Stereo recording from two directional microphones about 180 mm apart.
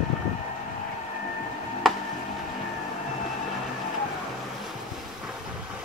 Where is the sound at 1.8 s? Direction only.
Centre (ahead or behind).